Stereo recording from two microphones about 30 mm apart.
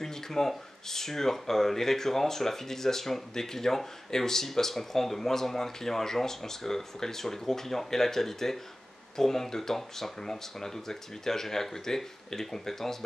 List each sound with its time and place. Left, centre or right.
0.0 s speech: centre